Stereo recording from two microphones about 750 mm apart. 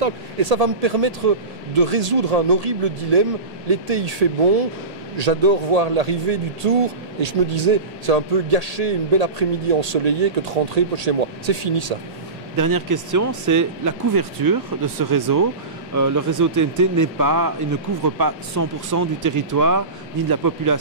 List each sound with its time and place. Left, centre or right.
0.0 s a man's voice: right
12.5 s speech: right